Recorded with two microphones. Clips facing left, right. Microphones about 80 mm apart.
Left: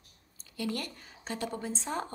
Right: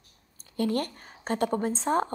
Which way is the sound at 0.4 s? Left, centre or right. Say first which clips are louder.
Right 8 dB; right.